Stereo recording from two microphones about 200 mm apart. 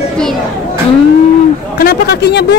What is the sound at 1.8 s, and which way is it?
Speech, 50° left (ahead or behind).